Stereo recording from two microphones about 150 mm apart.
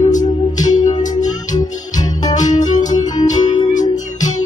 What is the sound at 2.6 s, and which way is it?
Music, 55° left (ahead or behind).